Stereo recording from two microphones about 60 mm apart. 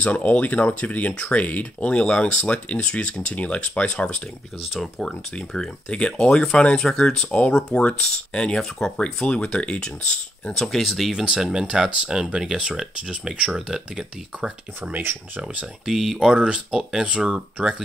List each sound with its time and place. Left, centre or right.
0.0 s speech: left; by 10.9 s centre
10.9 s speech: centre
14.9 s speech: right
15.4 s speech: centre
16.3 s speech: centre